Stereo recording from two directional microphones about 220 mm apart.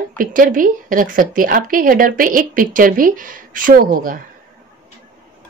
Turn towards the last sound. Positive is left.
turn(degrees=-40)  # may be behind; listen again after turning